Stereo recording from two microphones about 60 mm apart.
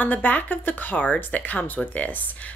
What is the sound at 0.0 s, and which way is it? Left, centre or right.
A woman's voice, left.